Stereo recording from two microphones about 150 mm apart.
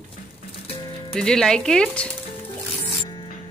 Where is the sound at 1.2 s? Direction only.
5° left (ahead or behind).